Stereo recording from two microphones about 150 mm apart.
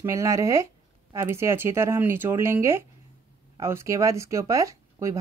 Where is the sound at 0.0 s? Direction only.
20° right (ahead or behind).